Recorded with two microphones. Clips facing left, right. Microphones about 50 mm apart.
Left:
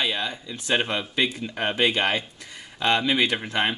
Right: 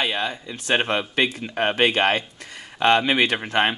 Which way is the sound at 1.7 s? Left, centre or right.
Right.